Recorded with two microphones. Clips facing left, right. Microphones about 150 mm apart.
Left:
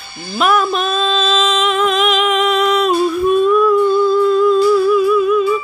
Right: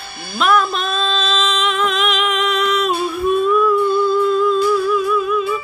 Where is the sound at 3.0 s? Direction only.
Centre (ahead or behind).